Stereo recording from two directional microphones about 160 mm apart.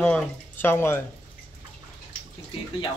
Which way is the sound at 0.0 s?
10° left (ahead or behind).